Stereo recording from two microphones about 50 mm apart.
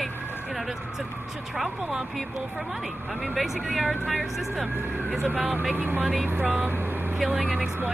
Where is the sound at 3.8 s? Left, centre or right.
Right.